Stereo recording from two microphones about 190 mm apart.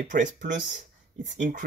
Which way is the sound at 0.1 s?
40° right (ahead or behind).